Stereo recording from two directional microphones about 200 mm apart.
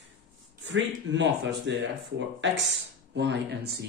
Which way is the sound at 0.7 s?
65° right (ahead or behind).